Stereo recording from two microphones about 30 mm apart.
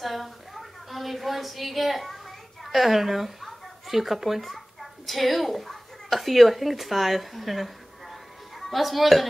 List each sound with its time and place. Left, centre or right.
0.0 s a woman's voice: centre